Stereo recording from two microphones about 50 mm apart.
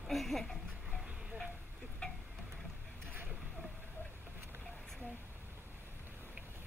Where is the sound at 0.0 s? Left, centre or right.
Centre.